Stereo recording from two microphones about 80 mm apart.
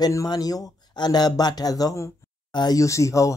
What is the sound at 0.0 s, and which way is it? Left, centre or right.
Speech, left.